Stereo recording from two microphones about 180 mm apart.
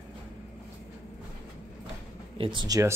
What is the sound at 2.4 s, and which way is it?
Speech, 25° right (ahead or behind).